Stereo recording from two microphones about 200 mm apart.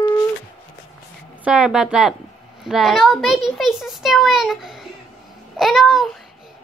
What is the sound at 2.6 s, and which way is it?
A child's voice, centre (ahead or behind).